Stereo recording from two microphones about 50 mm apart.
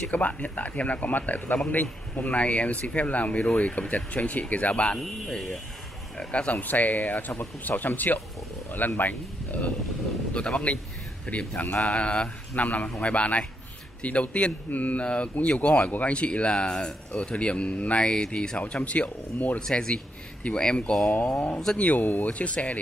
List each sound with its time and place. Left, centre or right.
0.1 s speech: left
5.0 s speech: centre
6.1 s speech: left
6.6 s speech: left
10.4 s speech: left
19.6 s speech: centre
21.7 s speech: left